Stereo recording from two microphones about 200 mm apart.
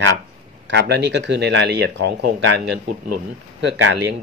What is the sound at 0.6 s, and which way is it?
Speech, 55° right (ahead or behind).